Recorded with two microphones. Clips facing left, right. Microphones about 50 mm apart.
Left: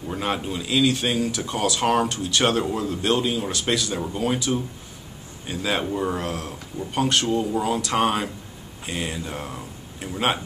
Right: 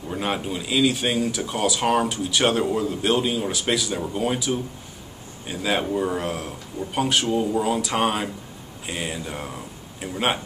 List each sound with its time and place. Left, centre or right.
0.1 s speech: centre